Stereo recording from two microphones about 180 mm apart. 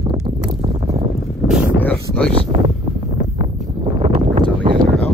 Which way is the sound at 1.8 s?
5° left (ahead or behind).